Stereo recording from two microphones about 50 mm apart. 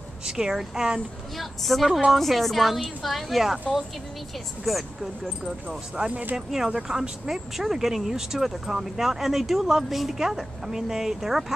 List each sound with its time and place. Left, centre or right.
0.4 s speech: centre
1.4 s a woman's voice: centre
4.7 s a woman's voice: centre
6.0 s speech: right
6.3 s speech: centre